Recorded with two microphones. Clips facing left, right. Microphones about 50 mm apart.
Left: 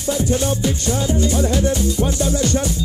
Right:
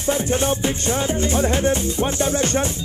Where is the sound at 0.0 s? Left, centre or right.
Right.